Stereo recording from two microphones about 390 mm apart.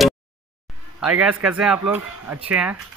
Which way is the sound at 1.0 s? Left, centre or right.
Centre.